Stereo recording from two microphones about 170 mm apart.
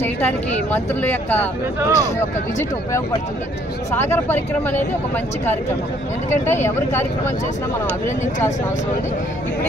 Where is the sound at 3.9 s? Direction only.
15° left (ahead or behind).